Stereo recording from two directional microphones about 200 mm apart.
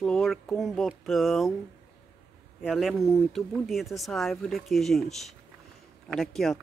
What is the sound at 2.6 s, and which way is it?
Speech, centre (ahead or behind).